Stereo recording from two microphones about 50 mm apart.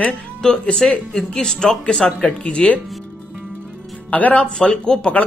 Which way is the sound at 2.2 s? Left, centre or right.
Left.